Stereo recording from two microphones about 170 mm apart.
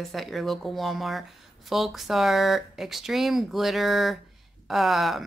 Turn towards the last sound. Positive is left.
turn(degrees=0)  # may be behind; listen again after turning